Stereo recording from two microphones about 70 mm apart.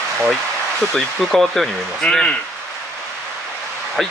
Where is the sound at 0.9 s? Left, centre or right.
Centre.